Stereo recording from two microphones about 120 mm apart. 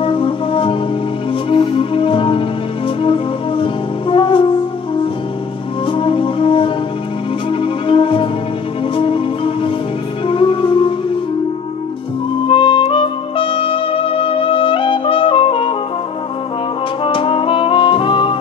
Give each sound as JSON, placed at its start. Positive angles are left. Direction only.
{"t": 0.0, "sound": "music", "side_deg": 45}
{"t": 5.9, "sound": "music", "side_deg": 45}
{"t": 12.4, "sound": "music", "side_deg": 45}
{"t": 17.0, "sound": "music", "side_deg": 45}